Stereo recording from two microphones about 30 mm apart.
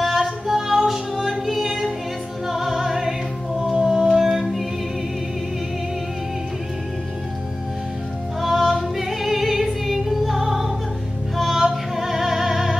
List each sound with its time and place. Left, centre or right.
0.0 s singing: centre
2.4 s music: centre
8.4 s music: centre